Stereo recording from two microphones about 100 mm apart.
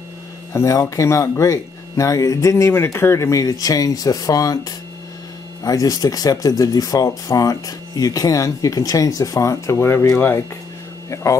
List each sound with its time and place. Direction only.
0.5 s speech: 30° left (ahead or behind)